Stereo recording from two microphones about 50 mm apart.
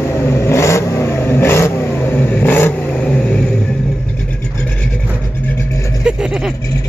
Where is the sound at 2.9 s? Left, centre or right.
Left.